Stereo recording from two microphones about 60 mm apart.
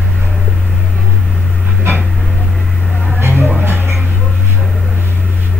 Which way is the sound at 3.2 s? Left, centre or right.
Right.